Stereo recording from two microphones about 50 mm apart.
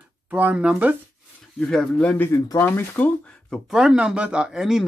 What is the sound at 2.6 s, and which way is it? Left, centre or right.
Speech, left.